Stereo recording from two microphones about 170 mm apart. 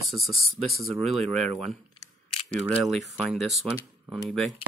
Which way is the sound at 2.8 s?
Centre (ahead or behind).